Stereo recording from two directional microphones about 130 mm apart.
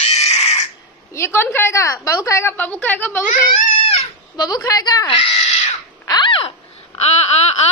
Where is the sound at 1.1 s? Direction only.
20° left (ahead or behind).